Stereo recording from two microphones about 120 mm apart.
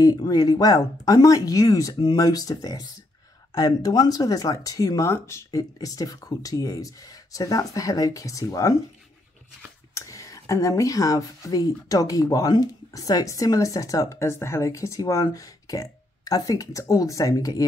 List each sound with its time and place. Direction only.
0.0 s speech: 30° left (ahead or behind)
9.9 s speech: 25° left (ahead or behind)